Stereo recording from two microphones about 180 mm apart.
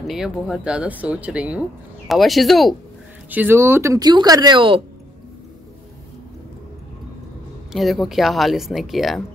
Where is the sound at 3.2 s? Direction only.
10° right (ahead or behind); by 4.8 s 30° right (ahead or behind).